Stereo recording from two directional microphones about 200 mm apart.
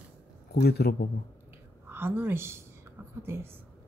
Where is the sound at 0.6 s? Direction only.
50° left (ahead or behind).